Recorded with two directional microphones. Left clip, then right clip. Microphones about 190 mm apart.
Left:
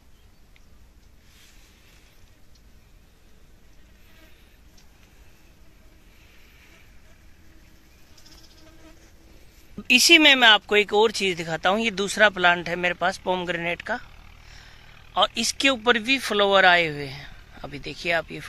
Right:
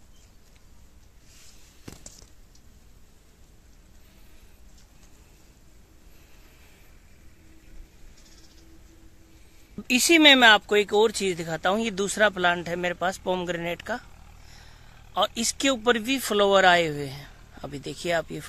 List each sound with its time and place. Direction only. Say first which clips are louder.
9.8 s speech: left 2 dB; 5° right (ahead or behind); by 18.5 s 25° right (ahead or behind)